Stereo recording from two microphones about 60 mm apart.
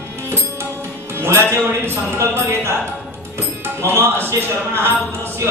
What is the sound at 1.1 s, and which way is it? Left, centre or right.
Speech, right.